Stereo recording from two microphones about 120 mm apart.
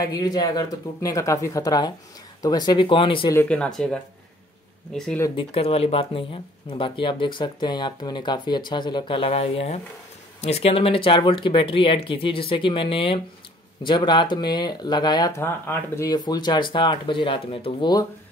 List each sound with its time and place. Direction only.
0.0 s speech: 30° left (ahead or behind)
3.3 s speech: 10° left (ahead or behind)
5.3 s speech: 50° left (ahead or behind); by 15.3 s 35° left (ahead or behind)
15.3 s speech: 20° left (ahead or behind)
16.2 s speech: 35° left (ahead or behind)